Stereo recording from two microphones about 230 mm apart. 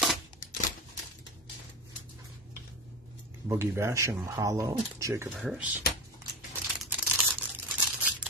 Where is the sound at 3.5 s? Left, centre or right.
Centre.